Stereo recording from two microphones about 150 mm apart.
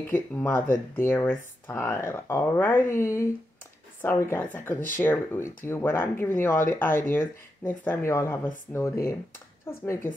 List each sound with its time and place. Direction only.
0.1 s speech: 15° left (ahead or behind)